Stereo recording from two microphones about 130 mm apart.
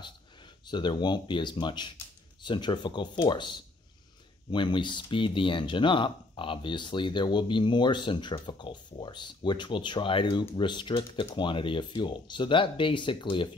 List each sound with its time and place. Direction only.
0.7 s speech: 35° left (ahead or behind)